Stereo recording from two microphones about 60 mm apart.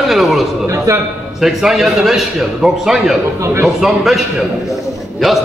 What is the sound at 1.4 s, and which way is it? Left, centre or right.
A man's voice, centre.